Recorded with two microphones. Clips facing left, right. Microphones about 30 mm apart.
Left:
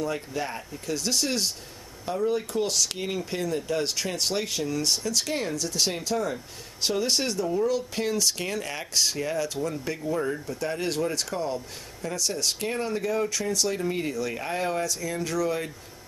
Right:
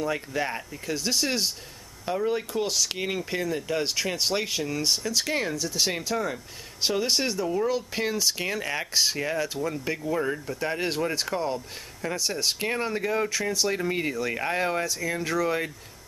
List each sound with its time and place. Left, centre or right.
0.0 s speech: centre
2.5 s speech: centre
3.0 s speech: centre
3.3 s speech: centre